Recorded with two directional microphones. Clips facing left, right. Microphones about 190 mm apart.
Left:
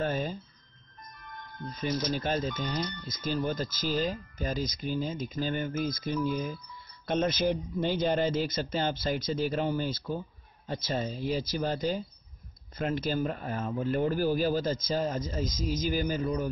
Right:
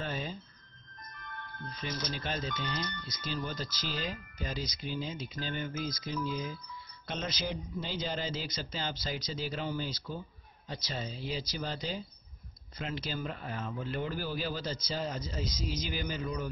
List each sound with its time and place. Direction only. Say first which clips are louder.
0.0 s alarm clock: left 7 dB; 50° left (ahead or behind)
1.1 s music: even; 10° left (ahead or behind)
1.8 s speech: left 8 dB; 45° left (ahead or behind)